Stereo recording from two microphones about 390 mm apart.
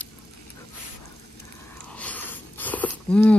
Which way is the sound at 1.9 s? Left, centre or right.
Centre.